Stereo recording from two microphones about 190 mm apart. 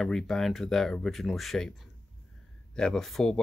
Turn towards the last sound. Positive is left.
turn(degrees=0)  # may be behind; listen again after turning